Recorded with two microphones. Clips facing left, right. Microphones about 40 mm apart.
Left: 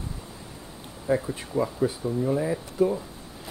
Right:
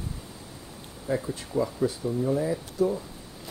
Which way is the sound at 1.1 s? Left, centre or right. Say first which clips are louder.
Left 3 dB; centre.